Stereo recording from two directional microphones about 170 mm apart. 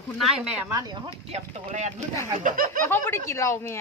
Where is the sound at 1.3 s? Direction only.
40° right (ahead or behind).